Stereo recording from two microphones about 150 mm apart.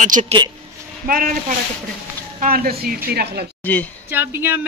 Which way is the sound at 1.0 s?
70° right (ahead or behind).